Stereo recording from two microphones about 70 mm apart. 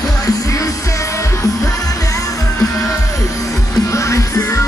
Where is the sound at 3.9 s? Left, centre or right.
Left.